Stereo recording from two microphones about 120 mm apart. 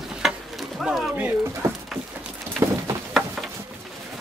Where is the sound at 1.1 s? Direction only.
20° right (ahead or behind).